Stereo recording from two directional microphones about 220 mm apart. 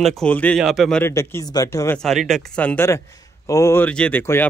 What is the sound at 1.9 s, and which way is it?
A man's voice, centre (ahead or behind).